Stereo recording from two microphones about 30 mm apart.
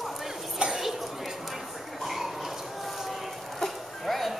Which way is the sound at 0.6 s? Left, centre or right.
Right.